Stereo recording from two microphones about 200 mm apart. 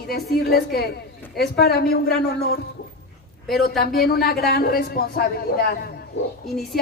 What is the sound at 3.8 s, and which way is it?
Speech, 50° left (ahead or behind).